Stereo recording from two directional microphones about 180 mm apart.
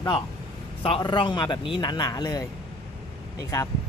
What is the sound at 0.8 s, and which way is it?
A man's voice, 25° left (ahead or behind).